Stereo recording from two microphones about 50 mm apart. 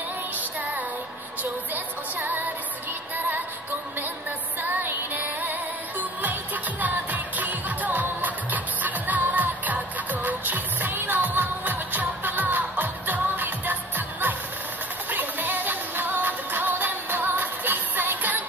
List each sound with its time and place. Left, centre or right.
4.6 s music: right